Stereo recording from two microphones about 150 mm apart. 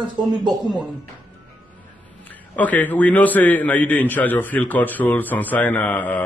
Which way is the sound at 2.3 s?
10° left (ahead or behind).